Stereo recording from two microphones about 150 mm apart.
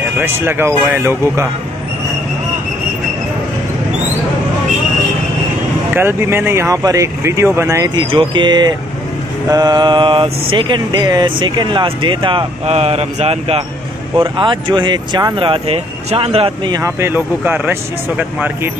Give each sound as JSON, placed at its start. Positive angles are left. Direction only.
{"t": 0.2, "sound": "speech", "side_deg": -15}
{"t": 5.9, "sound": "speech", "side_deg": -15}
{"t": 7.9, "sound": "speech", "side_deg": -30}
{"t": 16.8, "sound": "speech", "side_deg": -15}